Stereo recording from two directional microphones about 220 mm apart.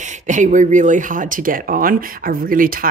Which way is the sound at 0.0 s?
35° right (ahead or behind).